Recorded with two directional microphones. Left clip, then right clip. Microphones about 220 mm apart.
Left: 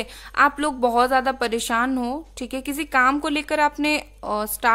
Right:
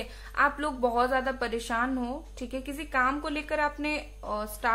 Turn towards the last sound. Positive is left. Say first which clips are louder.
# left 8 dB
turn(degrees=50)  # may be behind; listen again after turning